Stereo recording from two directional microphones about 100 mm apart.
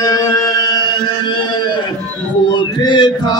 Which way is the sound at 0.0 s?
35° left (ahead or behind).